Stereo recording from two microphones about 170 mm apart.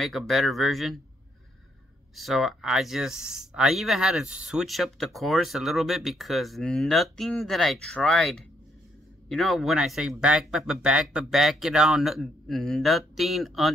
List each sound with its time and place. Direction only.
0.0 s speech: centre (ahead or behind)
2.1 s speech: centre (ahead or behind)